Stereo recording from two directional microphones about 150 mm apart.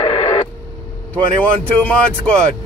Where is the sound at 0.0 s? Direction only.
40° left (ahead or behind).